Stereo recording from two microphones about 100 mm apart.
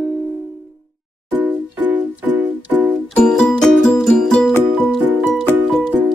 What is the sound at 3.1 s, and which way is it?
Music, 10° left (ahead or behind).